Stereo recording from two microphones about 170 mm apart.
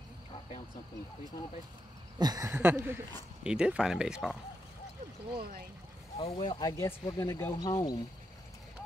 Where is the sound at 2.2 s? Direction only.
20° right (ahead or behind); by 4.3 s 5° right (ahead or behind).